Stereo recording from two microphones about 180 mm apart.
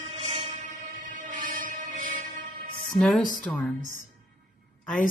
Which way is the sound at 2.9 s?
Centre (ahead or behind).